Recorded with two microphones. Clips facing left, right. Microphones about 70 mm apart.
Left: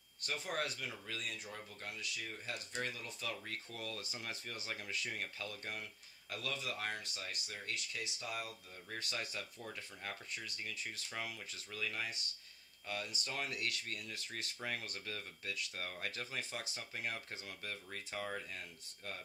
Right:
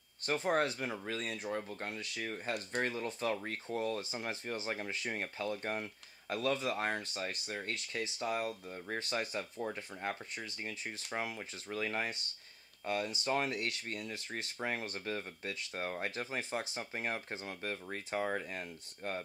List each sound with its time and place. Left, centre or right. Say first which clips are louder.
0.2 s speech: right 8 dB; right